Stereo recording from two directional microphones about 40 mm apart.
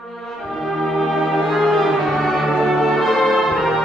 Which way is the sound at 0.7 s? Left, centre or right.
Centre.